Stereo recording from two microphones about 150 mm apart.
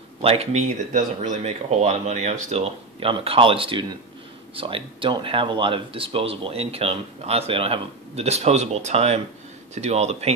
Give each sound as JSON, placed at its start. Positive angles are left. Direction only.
{"t": 0.2, "sound": "speech", "side_deg": -45}